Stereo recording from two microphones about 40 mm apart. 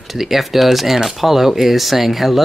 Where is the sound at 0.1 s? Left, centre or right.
Centre.